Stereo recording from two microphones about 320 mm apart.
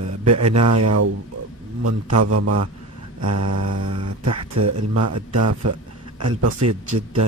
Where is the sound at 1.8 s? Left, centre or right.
Right.